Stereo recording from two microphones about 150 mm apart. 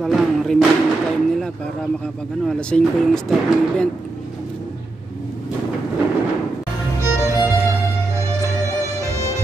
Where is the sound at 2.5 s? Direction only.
5° left (ahead or behind).